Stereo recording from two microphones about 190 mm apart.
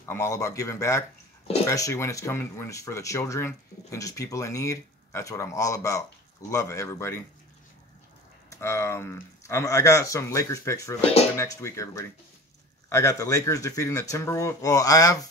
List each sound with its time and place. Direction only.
0.1 s speech: 15° left (ahead or behind)
8.5 s speech: 15° left (ahead or behind)